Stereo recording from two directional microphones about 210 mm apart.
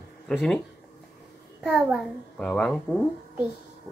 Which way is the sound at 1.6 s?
5° right (ahead or behind).